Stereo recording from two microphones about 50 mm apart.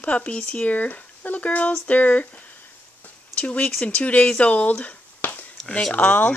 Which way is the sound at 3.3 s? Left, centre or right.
Left.